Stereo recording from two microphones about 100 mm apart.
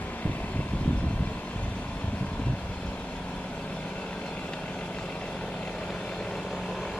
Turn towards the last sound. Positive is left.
turn(degrees=5)  # may be behind; listen again after turning